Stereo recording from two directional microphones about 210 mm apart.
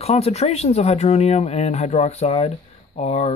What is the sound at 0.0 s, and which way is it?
Speech, 30° left (ahead or behind).